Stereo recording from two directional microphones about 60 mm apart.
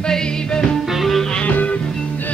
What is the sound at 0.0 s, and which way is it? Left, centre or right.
Music, centre.